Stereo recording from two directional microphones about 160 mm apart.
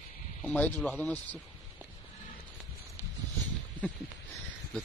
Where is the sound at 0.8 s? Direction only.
10° left (ahead or behind).